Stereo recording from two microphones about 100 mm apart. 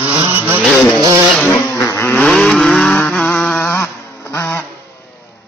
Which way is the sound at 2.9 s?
20° left (ahead or behind).